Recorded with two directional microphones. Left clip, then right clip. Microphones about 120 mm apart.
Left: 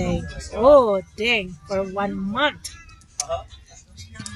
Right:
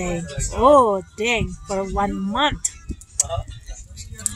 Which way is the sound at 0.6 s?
15° right (ahead or behind).